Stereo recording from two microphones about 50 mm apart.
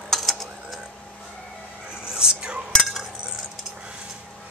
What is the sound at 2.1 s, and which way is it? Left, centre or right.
Cutlery, centre.